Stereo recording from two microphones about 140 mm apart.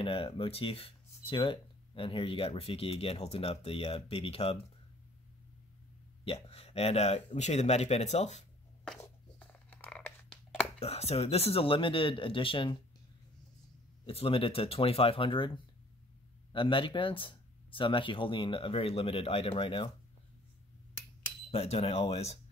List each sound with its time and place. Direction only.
0.0 s speech: 40° left (ahead or behind)
6.2 s speech: 45° left (ahead or behind)
8.8 s a sound: 5° left (ahead or behind)
10.8 s speech: 50° left (ahead or behind)
14.0 s speech: 45° left (ahead or behind)
21.5 s speech: 45° left (ahead or behind)